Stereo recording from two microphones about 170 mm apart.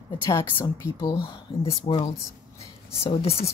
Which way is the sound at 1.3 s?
30° left (ahead or behind).